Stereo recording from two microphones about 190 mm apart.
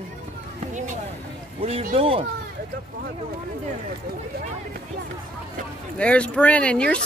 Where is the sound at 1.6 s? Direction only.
30° right (ahead or behind).